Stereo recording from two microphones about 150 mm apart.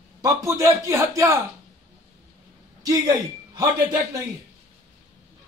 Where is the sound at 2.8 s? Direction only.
25° right (ahead or behind).